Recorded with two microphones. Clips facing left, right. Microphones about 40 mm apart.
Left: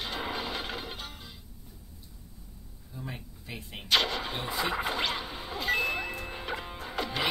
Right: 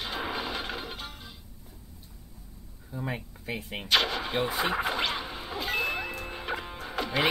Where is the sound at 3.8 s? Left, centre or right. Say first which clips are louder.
Right 1 dB; centre.